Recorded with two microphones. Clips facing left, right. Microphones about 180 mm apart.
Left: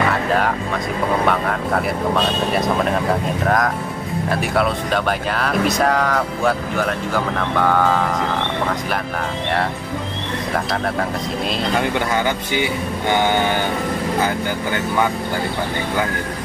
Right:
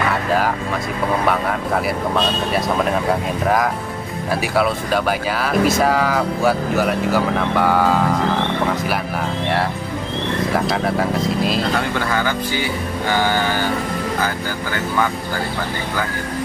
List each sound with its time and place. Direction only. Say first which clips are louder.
0.1 s music: even; centre (ahead or behind)
1.2 s speech: even; centre (ahead or behind)
10.5 s speech: right 1 dB; centre (ahead or behind)
12.1 s speech: even; 20° left (ahead or behind)